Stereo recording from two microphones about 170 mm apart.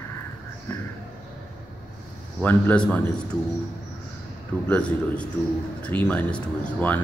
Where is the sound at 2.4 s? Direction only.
10° left (ahead or behind).